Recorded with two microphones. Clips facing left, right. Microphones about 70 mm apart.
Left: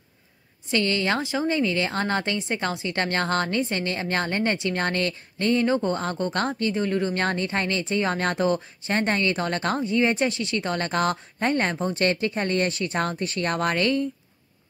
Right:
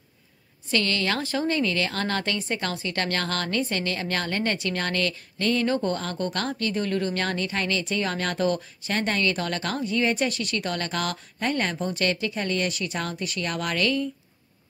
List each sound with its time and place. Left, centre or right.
0.7 s a woman's voice: left